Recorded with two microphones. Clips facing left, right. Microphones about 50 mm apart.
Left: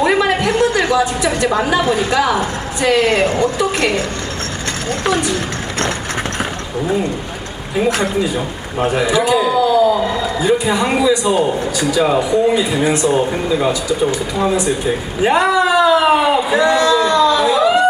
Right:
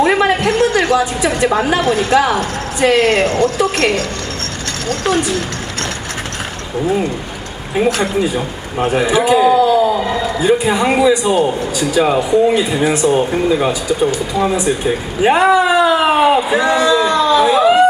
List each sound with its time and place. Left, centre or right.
0.0 s a sound: centre
1.2 s speech: centre
1.8 s speech: centre; by 5.2 s left
7.7 s a man's voice: centre